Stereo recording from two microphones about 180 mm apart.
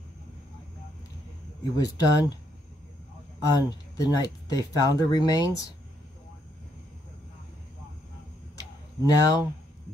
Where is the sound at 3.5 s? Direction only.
20° left (ahead or behind).